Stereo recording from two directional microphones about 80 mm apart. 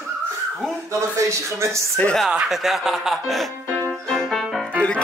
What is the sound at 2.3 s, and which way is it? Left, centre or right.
Speech, centre.